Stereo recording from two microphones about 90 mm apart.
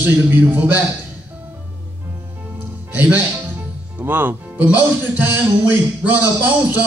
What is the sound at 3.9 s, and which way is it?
A man's voice, 20° right (ahead or behind).